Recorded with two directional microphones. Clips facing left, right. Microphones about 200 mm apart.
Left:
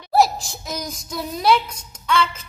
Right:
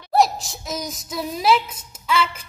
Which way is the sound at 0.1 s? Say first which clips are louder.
Left 1 dB; centre (ahead or behind).